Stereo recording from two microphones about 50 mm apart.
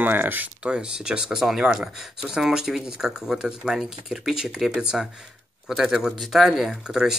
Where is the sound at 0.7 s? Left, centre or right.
Centre.